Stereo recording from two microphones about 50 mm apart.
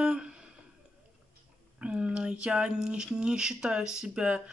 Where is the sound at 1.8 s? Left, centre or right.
Right.